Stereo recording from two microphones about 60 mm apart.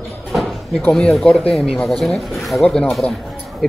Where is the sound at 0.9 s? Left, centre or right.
Centre.